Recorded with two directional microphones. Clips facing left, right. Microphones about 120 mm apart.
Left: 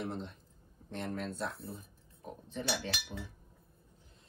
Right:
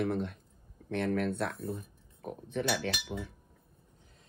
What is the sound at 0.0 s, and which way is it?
Speech, 60° right (ahead or behind).